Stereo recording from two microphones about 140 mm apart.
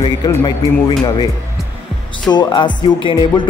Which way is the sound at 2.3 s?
35° left (ahead or behind).